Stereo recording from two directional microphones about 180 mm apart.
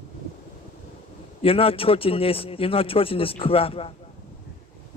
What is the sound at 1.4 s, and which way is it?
A man's voice, 30° left (ahead or behind).